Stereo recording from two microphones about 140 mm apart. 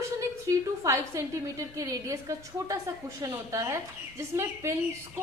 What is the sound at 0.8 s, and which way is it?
A woman's voice, 20° right (ahead or behind).